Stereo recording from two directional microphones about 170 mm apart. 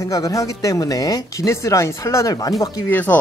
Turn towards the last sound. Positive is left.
turn(degrees=10)  # may be behind; listen again after turning